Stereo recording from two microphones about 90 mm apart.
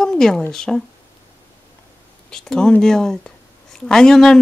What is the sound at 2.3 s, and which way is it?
Speech, 10° left (ahead or behind).